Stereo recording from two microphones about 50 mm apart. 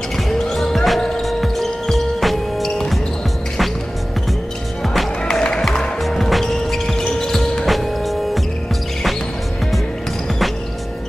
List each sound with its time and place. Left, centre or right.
0.3 s basketball bounce: centre
1.2 s music: centre
5.2 s music: centre
5.6 s music: centre